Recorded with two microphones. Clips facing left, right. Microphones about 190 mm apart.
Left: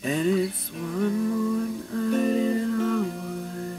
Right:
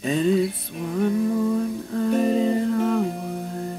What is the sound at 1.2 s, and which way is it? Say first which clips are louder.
Music: right 3 dB; 35° right (ahead or behind).